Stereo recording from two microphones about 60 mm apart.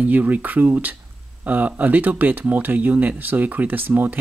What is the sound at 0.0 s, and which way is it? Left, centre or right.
Speech, right.